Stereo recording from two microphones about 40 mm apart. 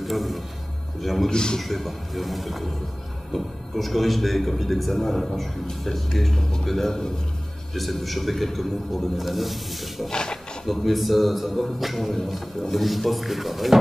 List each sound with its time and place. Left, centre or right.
0.0 s speech: centre
1.3 s a man's voice: centre
1.6 s a man's voice: centre
10.0 s a man's voice: centre
10.6 s speech: centre